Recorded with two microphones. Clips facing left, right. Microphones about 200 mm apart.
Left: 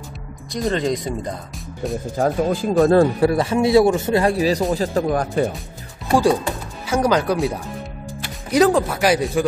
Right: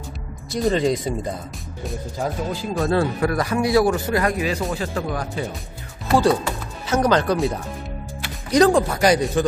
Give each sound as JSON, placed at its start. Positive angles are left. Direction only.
{"t": 0.5, "sound": "speech", "side_deg": 0}
{"t": 2.1, "sound": "speech", "side_deg": 50}
{"t": 3.3, "sound": "a man's voice", "side_deg": 25}
{"t": 6.0, "sound": "speech", "side_deg": 15}